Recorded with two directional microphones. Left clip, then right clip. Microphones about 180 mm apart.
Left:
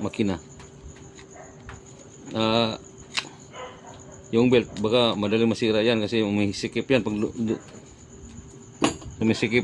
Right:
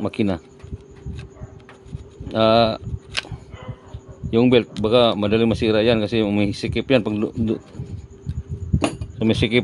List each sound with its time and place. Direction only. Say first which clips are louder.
0.0 s speech: right 4 dB; 55° right (ahead or behind)
2.2 s a sound: right 8 dB; 55° right (ahead or behind)
4.3 s speech: right 4 dB; 55° right (ahead or behind)
9.2 s speech: right 4 dB; 50° right (ahead or behind)